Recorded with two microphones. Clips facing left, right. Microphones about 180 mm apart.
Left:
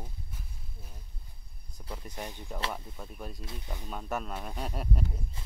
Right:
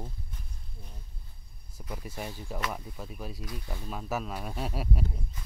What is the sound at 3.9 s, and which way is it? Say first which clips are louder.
Speech: right 1 dB; 5° right (ahead or behind).